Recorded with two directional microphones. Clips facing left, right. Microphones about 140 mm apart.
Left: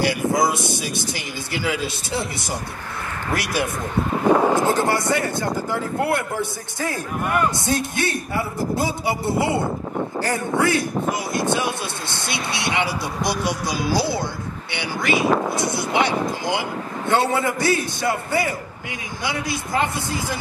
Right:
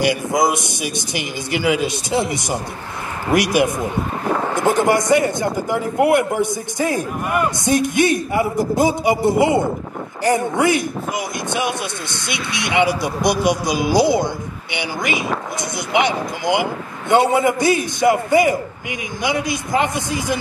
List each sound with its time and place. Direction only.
0.0 s speech: 15° right (ahead or behind)